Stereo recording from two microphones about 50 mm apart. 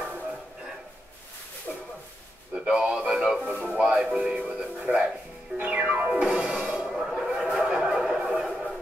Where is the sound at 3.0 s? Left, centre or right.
Right.